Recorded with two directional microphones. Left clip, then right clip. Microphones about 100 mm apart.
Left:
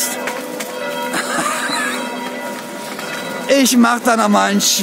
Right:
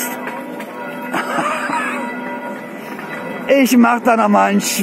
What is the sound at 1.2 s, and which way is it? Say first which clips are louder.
Music: right 3 dB; 20° left (ahead or behind).